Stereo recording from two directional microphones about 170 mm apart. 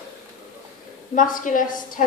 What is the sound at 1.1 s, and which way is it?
Speech, 50° left (ahead or behind).